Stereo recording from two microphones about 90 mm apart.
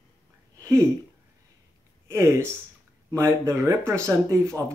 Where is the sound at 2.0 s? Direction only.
30° right (ahead or behind).